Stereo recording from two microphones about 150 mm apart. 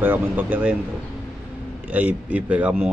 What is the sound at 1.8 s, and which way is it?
Speech, 10° right (ahead or behind).